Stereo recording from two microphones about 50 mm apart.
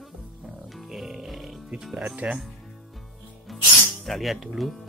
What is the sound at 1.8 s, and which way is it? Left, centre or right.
Speech, centre.